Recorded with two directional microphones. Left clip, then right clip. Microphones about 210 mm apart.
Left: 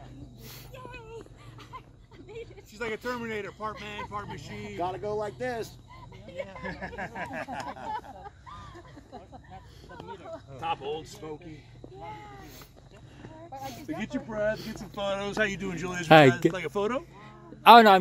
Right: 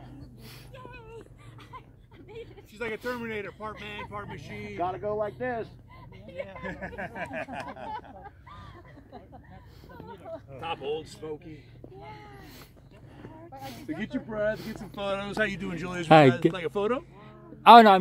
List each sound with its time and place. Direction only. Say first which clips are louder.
0.7 s a sound: left 2 dB; 40° left (ahead or behind)
2.2 s speech: left 1 dB; 50° left (ahead or behind)
4.7 s speech: right 2 dB; 5° left (ahead or behind)
6.2 s speech: even; 50° left (ahead or behind)
10.0 s a sound: right 1 dB; 55° left (ahead or behind)
11.2 s speech: right 2 dB; 50° left (ahead or behind)
13.8 s speech: right 2 dB; 40° left (ahead or behind)
16.1 s speech: even; 10° right (ahead or behind)
16.5 s speech: right 1 dB; 40° left (ahead or behind)
17.2 s a sound: even; 10° right (ahead or behind)